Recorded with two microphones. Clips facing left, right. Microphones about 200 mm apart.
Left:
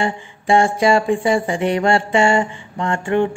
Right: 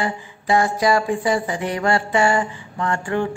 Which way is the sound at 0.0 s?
25° left (ahead or behind).